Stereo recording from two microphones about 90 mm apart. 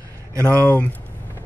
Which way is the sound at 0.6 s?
20° left (ahead or behind).